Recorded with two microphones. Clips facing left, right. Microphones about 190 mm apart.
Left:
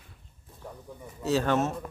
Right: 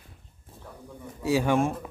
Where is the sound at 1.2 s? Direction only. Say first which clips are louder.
Right 2 dB; 10° right (ahead or behind).